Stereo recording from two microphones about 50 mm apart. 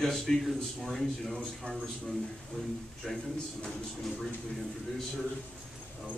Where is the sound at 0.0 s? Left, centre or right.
Centre.